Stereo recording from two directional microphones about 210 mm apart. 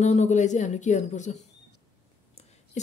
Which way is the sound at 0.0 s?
35° left (ahead or behind).